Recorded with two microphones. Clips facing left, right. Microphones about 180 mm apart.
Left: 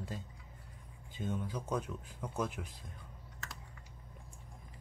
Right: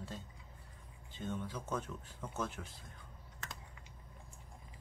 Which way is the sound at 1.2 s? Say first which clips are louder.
Left 3 dB; 10° left (ahead or behind).